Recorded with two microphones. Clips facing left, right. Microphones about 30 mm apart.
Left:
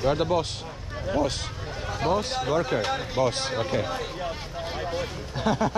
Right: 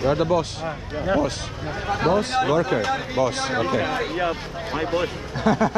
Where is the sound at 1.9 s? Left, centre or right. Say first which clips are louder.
Right 5 dB; right.